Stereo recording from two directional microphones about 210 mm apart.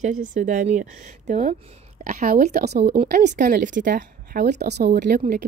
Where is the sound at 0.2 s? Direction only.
40° right (ahead or behind).